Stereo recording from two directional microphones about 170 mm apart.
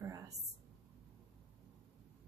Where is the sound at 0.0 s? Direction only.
20° right (ahead or behind).